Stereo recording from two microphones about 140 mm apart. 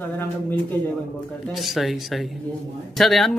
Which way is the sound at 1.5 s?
Centre (ahead or behind).